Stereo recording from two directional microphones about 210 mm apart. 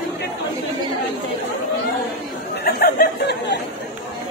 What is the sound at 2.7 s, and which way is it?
Speech, 45° left (ahead or behind).